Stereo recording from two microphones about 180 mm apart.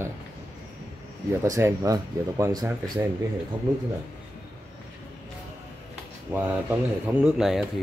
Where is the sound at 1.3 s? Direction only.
15° right (ahead or behind).